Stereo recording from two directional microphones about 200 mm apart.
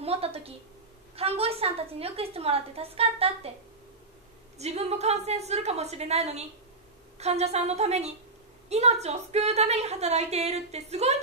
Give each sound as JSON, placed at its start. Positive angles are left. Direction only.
{"t": 0.0, "sound": "a woman's voice", "side_deg": -30}
{"t": 4.6, "sound": "a woman's voice", "side_deg": -30}